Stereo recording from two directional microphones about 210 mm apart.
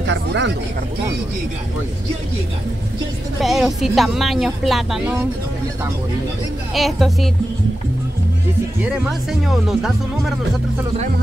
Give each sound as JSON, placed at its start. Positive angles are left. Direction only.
{"t": 0.0, "sound": "speech", "side_deg": -60}
{"t": 3.3, "sound": "speech", "side_deg": 0}
{"t": 6.7, "sound": "speech", "side_deg": 0}
{"t": 8.8, "sound": "speech", "side_deg": -5}